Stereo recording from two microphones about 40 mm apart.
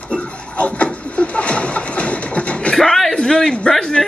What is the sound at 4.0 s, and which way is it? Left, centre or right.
Speech, centre.